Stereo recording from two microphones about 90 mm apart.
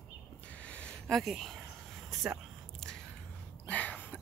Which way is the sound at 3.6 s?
15° left (ahead or behind).